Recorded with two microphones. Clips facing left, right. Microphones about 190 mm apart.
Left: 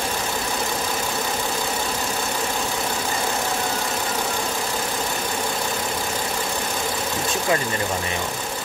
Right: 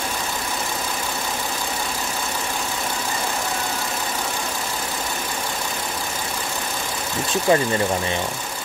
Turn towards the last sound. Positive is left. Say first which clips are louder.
# right 5 dB
turn(degrees=-30)  # may be behind; listen again after turning